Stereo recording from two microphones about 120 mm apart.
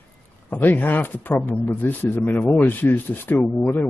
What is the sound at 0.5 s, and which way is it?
Speech, 15° left (ahead or behind).